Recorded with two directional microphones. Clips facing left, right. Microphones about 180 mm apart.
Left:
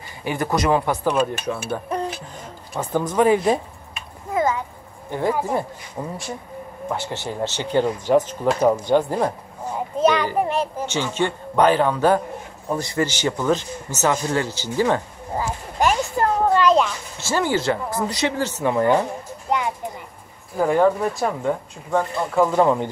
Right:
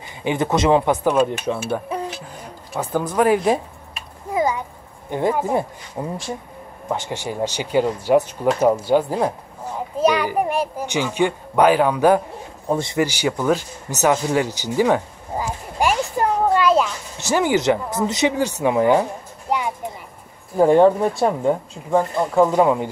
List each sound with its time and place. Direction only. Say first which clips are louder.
0.2 s speech: right 3 dB; 20° right (ahead or behind); by 3.5 s 5° right (ahead or behind)
4.3 s a sound: right 1 dB; 15° right (ahead or behind)
5.1 s a child's voice: right 2 dB; 20° right (ahead or behind)
12.6 s speech: right 3 dB; 25° right (ahead or behind)
13.0 s speech: left 1 dB; 10° right (ahead or behind)
17.2 s a child's voice: right 3 dB; 15° right (ahead or behind)
20.5 s speech: right 4 dB; 30° right (ahead or behind); by 22.8 s 10° right (ahead or behind)